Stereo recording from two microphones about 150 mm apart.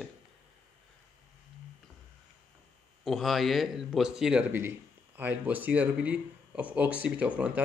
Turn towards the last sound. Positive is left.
turn(degrees=-10)  # may be behind; listen again after turning